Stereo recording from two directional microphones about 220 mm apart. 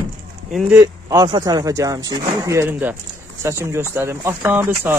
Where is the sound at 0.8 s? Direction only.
15° right (ahead or behind).